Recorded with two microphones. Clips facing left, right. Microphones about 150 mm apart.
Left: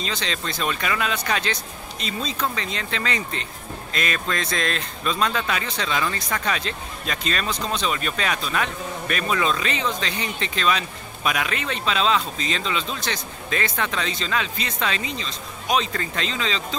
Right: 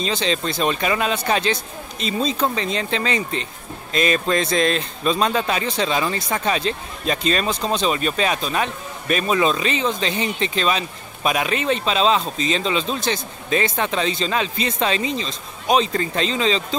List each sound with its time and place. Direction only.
0.0 s speech: 25° right (ahead or behind)